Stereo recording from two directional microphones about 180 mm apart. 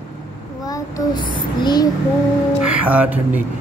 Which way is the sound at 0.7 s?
25° left (ahead or behind).